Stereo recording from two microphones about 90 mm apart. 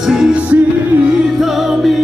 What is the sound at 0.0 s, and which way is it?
Music, 5° right (ahead or behind).